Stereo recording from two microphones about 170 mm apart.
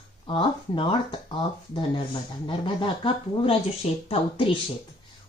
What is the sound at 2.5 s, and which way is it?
A woman's voice, 30° left (ahead or behind).